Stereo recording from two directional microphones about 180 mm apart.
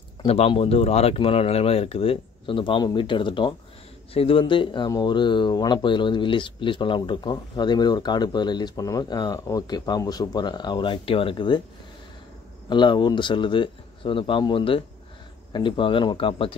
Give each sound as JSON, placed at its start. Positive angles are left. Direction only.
{"t": 0.2, "sound": "speech", "side_deg": 30}
{"t": 12.6, "sound": "speech", "side_deg": 25}